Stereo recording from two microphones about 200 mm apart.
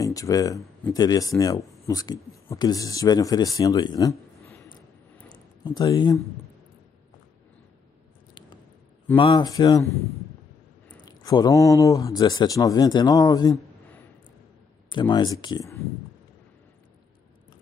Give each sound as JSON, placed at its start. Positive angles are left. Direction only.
{"t": 0.0, "sound": "a man's voice", "side_deg": 15}
{"t": 5.3, "sound": "a sound", "side_deg": 20}
{"t": 9.1, "sound": "a man's voice", "side_deg": 25}
{"t": 11.1, "sound": "a man's voice", "side_deg": 20}
{"t": 14.9, "sound": "a man's voice", "side_deg": 20}